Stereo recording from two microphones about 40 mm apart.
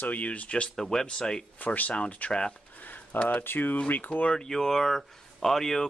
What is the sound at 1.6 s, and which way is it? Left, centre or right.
Speech, left.